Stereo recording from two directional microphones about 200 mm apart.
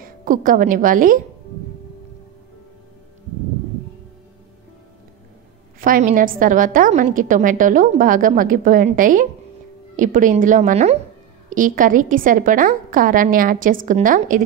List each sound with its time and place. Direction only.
0.0 s a woman's voice: 45° right (ahead or behind)
5.8 s a woman's voice: 45° right (ahead or behind)